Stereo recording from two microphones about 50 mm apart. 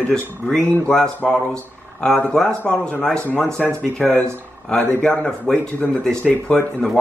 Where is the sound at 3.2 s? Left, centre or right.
Left.